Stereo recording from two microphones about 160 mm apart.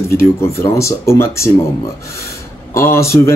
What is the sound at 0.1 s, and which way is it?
Speech, 15° left (ahead or behind).